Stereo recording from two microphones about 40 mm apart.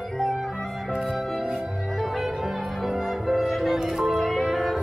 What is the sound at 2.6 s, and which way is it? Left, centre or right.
Music, centre.